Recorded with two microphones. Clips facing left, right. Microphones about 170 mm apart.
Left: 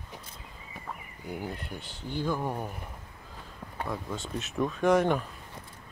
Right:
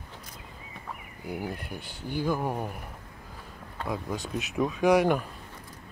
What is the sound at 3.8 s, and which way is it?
Speech, 15° right (ahead or behind).